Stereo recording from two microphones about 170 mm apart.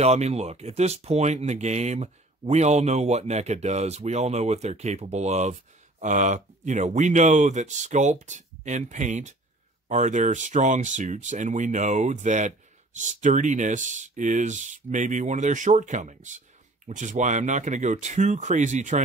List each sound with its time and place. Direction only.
0.0 s speech: 40° right (ahead or behind)